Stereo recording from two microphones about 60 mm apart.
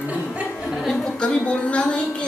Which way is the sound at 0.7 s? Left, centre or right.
Centre.